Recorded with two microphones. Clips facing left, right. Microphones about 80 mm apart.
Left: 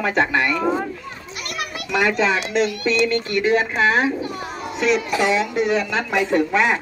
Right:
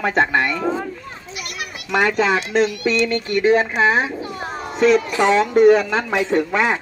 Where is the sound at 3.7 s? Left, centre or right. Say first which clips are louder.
Even; right.